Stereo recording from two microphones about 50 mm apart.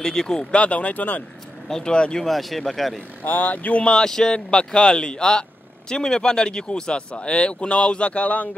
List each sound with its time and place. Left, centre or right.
0.0 s speech: centre; by 1.2 s left
1.7 s speech: centre
2.2 s speech: centre
3.3 s speech: left